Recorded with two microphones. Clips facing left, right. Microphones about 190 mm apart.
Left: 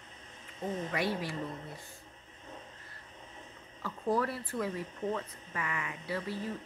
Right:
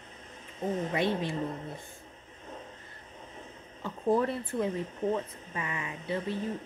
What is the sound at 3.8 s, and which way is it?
Speech, 20° right (ahead or behind).